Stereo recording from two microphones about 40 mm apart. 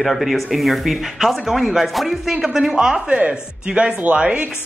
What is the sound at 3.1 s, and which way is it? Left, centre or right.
Speech, right.